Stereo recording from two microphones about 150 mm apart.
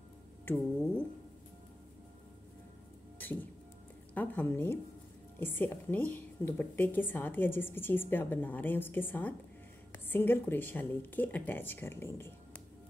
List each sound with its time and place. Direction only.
0.5 s a woman's voice: 15° left (ahead or behind)
4.1 s a woman's voice: 10° left (ahead or behind)